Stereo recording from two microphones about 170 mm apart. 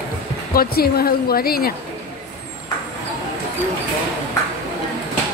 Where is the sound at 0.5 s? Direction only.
60° left (ahead or behind).